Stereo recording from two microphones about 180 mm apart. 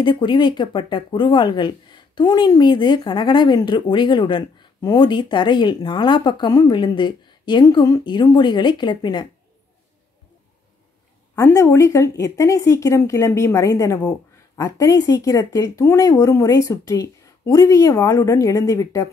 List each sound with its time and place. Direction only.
0.0 s speech: 25° left (ahead or behind)
11.3 s speech: 15° left (ahead or behind)